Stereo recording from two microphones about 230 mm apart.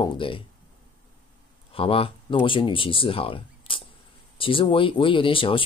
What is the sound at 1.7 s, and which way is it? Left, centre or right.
Speech, left.